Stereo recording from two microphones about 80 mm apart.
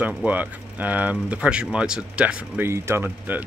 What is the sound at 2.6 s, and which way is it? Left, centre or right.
Speech, right.